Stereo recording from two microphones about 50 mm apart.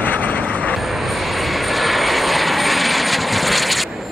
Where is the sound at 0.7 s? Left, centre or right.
Centre.